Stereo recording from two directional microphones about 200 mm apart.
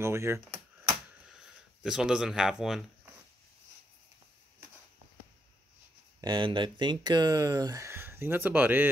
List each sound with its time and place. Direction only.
0.0 s speech: 15° right (ahead or behind)
1.3 s speech: 5° right (ahead or behind)
6.2 s speech: 25° right (ahead or behind)